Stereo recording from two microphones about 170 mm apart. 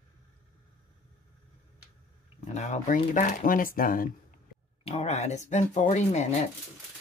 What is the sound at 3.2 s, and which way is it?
Speech, 50° left (ahead or behind).